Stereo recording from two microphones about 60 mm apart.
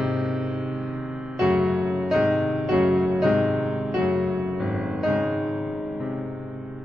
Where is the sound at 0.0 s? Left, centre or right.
Centre.